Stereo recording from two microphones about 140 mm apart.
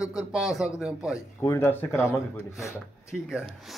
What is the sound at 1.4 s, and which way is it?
Speech, 20° left (ahead or behind).